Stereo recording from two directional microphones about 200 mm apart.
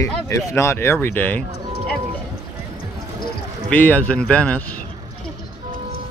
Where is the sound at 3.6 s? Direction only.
10° left (ahead or behind).